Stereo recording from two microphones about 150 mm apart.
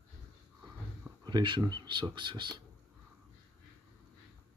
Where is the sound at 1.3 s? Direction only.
30° right (ahead or behind).